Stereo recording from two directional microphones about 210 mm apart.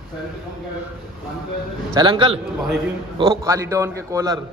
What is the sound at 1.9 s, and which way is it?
A man's voice, 25° right (ahead or behind).